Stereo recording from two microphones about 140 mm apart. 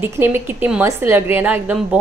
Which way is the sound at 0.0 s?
15° right (ahead or behind).